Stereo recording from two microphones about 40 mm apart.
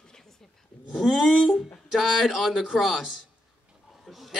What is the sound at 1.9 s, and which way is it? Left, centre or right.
Speech, centre.